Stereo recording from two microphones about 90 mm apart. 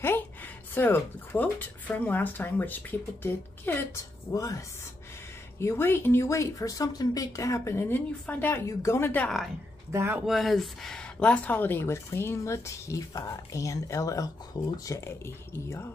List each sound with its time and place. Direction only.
0.0 s speech: 25° left (ahead or behind)
4.3 s speech: 40° left (ahead or behind)
5.6 s speech: 30° left (ahead or behind)
8.6 s speech: 30° left (ahead or behind)
9.8 s speech: 25° right (ahead or behind)
10.2 s speech: centre (ahead or behind); by 14.7 s 45° left (ahead or behind)
14.9 s speech: 30° left (ahead or behind)